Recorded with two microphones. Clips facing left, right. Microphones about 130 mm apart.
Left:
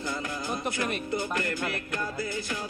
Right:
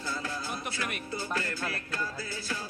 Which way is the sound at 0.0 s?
15° left (ahead or behind).